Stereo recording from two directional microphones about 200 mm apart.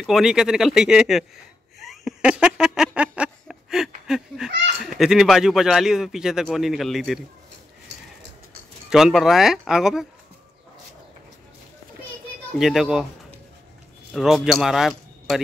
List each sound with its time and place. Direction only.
0.0 s a man's voice: centre (ahead or behind)
1.8 s a sound: centre (ahead or behind)
4.5 s a sound: 60° right (ahead or behind)
4.8 s a man's voice: centre (ahead or behind)
8.9 s a man's voice: centre (ahead or behind)
12.5 s a man's voice: centre (ahead or behind)
14.1 s speech: centre (ahead or behind)